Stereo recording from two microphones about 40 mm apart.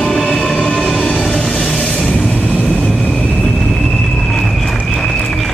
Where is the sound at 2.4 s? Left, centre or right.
Left.